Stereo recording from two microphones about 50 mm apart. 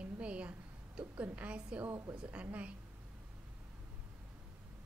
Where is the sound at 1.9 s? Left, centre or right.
Right.